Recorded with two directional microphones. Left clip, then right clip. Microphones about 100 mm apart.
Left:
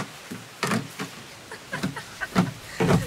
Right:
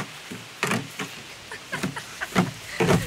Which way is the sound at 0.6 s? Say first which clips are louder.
Right 1 dB; 5° right (ahead or behind).